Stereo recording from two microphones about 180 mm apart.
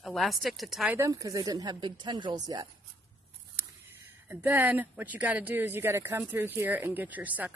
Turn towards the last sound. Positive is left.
turn(degrees=-10)  # may be behind; listen again after turning